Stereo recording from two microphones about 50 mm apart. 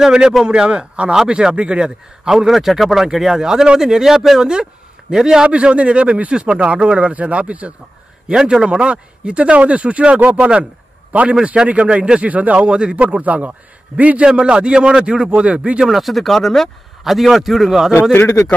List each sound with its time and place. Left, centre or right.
0.0 s a man's voice: centre
5.5 s speech: right
8.4 s speech: centre
10.2 s a man's voice: right
14.2 s speech: centre
15.9 s a man's voice: centre